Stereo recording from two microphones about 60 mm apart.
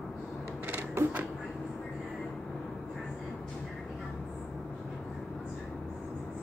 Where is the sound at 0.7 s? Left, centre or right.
Right.